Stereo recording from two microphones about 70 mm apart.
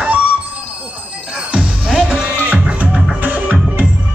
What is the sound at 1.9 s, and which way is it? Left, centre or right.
Music, centre.